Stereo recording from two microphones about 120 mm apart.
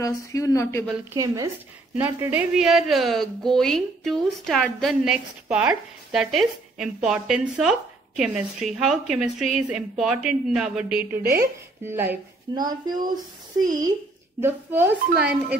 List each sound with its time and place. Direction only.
0.0 s speech: 25° left (ahead or behind)
1.1 s speech: 30° right (ahead or behind)
2.0 s a woman's voice: 20° right (ahead or behind)
2.5 s a woman's voice: centre (ahead or behind)
11.2 s speech: 20° right (ahead or behind)
12.5 s speech: 35° right (ahead or behind)
14.4 s a woman's voice: 20° right (ahead or behind)